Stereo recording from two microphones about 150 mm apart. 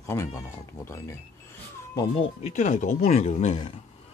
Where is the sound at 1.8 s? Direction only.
20° left (ahead or behind).